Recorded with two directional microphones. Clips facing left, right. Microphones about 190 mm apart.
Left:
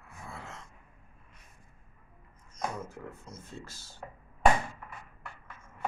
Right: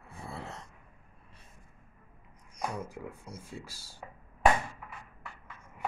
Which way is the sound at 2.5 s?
10° right (ahead or behind).